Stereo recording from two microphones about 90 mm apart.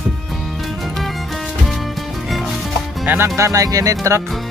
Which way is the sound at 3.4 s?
40° right (ahead or behind).